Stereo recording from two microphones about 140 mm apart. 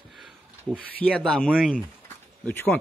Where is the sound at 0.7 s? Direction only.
10° left (ahead or behind).